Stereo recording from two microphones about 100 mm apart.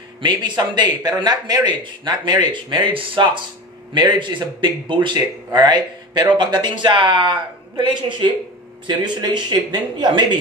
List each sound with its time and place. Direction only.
0.2 s speech: 50° right (ahead or behind)
8.8 s speech: 50° right (ahead or behind)